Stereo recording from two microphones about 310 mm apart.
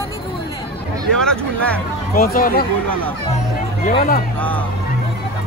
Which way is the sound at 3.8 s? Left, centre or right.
Left.